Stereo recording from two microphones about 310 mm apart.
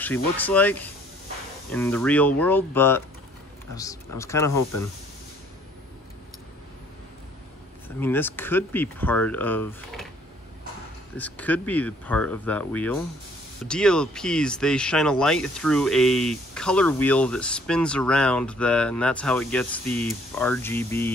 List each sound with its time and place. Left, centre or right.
0.0 s speech: centre
8.0 s speech: centre
11.1 s speech: centre